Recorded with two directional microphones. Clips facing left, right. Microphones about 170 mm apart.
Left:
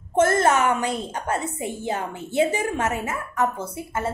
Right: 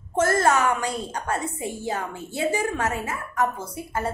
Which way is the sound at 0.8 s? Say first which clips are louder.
Left 2 dB; 25° left (ahead or behind).